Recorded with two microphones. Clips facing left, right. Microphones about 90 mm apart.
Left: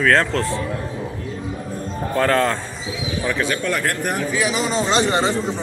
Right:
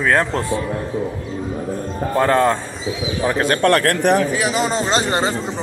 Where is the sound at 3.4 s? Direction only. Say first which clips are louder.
Right 9 dB; 60° right (ahead or behind); by 4.2 s 85° right.